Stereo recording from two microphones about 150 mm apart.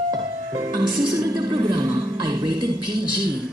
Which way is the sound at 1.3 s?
25° right (ahead or behind).